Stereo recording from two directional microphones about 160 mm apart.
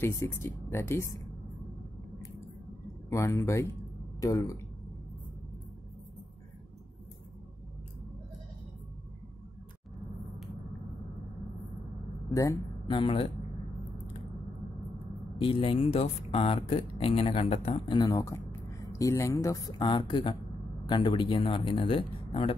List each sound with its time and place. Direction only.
0.0 s speech: 15° left (ahead or behind)
3.1 s speech: 20° left (ahead or behind)
12.3 s speech: 20° left (ahead or behind)
15.3 s speech: 35° left (ahead or behind)
17.9 s speech: 20° left (ahead or behind)